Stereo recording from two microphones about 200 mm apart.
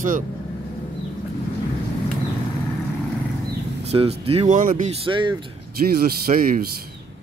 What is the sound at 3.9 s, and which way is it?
Speech, 30° right (ahead or behind).